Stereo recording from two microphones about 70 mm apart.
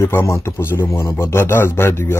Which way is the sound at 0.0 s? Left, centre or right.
Left.